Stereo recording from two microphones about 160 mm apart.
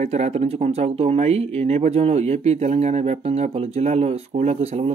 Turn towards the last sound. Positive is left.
turn(degrees=-40)  # may be behind; listen again after turning